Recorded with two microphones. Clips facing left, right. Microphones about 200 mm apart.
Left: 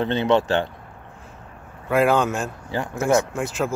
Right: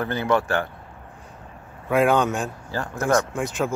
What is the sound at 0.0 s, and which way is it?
Speech, 25° left (ahead or behind).